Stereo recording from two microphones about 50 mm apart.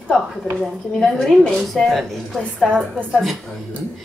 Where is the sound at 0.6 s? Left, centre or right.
Centre.